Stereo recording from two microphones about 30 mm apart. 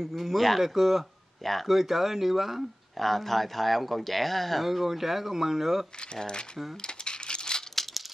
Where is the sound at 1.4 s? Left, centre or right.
Centre.